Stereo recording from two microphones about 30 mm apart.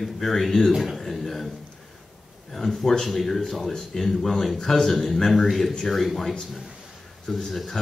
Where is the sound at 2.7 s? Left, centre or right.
Centre.